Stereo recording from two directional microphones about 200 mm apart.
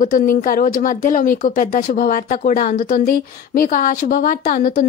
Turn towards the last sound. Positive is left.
turn(degrees=45)  # may be behind; listen again after turning